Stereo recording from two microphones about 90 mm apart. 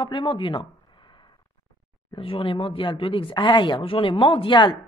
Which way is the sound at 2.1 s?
85° left.